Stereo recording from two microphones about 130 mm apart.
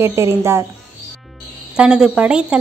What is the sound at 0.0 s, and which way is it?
Speech, 20° right (ahead or behind).